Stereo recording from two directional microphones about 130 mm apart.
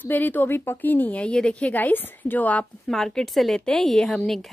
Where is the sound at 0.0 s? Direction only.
15° left (ahead or behind).